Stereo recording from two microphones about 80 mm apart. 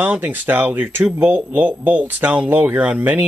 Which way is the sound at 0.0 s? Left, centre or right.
Right.